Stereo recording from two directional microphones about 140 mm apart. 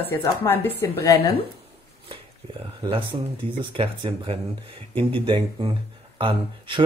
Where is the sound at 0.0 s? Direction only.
15° left (ahead or behind).